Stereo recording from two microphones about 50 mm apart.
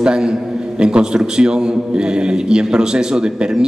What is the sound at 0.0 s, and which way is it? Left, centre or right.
Speech, centre.